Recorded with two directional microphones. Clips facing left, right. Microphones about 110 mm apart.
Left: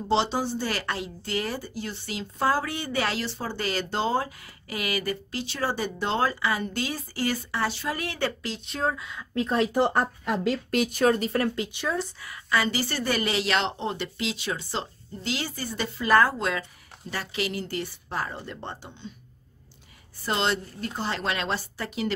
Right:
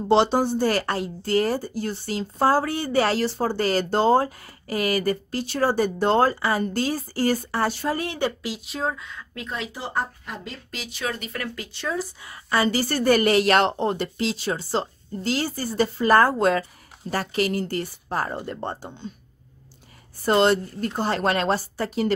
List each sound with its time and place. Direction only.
0.1 s a woman's voice: 55° right (ahead or behind)
7.9 s a woman's voice: 30° right (ahead or behind)
8.2 s speech: 10° right (ahead or behind); by 9.2 s 5° left (ahead or behind)
9.3 s speech: 35° left (ahead or behind)
9.8 s speech: 60° left (ahead or behind); by 11.9 s 15° left (ahead or behind)
12.2 s a woman's voice: 30° right (ahead or behind)
20.2 s speech: 45° right (ahead or behind)